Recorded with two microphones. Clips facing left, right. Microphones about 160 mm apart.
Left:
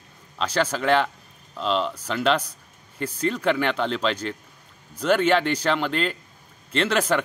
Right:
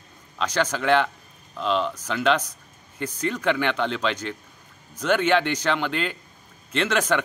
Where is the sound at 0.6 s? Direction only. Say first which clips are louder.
Even; 5° left (ahead or behind).